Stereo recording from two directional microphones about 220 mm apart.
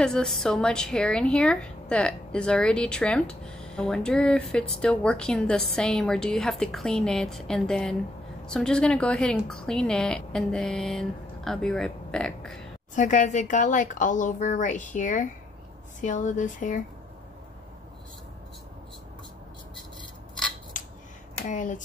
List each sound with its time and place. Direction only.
0.0 s a woman's voice: 5° left (ahead or behind)
12.9 s a woman's voice: 35° left (ahead or behind)
20.7 s finger snapping: 35° left (ahead or behind)
21.4 s a woman's voice: 35° left (ahead or behind)